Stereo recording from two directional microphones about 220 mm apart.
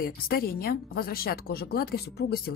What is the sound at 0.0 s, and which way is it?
Speech, 45° left (ahead or behind).